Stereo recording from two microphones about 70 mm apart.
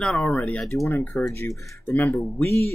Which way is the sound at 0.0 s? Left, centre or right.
Centre.